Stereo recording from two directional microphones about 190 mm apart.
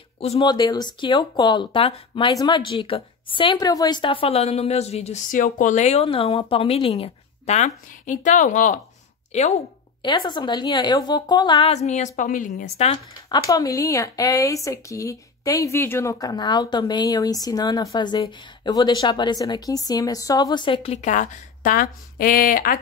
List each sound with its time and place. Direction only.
0.2 s speech: 30° left (ahead or behind)
10.0 s speech: 25° left (ahead or behind)
13.3 s speech: 20° left (ahead or behind); by 22.8 s 45° left (ahead or behind)